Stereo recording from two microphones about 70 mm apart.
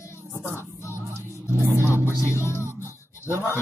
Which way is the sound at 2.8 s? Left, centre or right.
Right.